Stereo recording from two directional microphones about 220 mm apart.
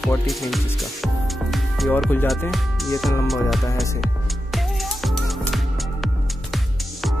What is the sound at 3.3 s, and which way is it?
Speech, centre (ahead or behind).